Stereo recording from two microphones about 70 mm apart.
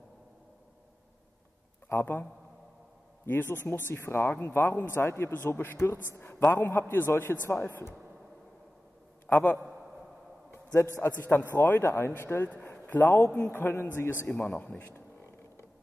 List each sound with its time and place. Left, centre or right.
1.9 s speech: left
3.3 s speech: left
9.3 s speech: left
10.5 s a sound: left
11.0 s speech: left
12.4 s a man's voice: left
14.4 s speech: centre